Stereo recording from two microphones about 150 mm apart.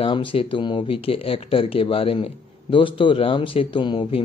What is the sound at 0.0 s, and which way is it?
Speech, 35° left (ahead or behind).